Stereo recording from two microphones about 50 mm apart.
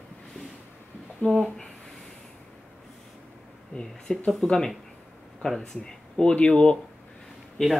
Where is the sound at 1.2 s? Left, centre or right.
Left.